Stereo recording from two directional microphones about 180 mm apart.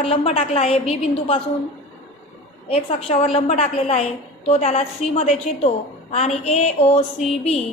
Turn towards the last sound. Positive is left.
turn(degrees=35)  # may be behind; listen again after turning